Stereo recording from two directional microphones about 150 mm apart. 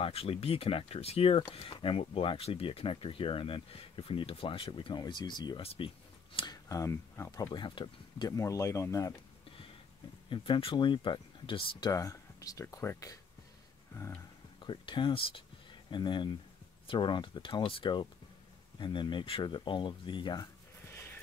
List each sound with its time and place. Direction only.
0.0 s speech: 40° left (ahead or behind); by 9.1 s 20° left (ahead or behind)
10.3 s speech: 35° left (ahead or behind)
11.9 s speech: 20° left (ahead or behind)
13.9 s a sound: 20° left (ahead or behind)
14.6 s speech: 30° left (ahead or behind)